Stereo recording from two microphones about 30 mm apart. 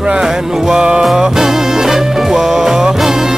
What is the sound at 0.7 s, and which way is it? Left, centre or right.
Music, right.